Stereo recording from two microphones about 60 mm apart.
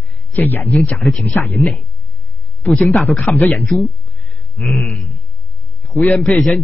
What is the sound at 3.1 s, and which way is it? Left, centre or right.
Speech, left.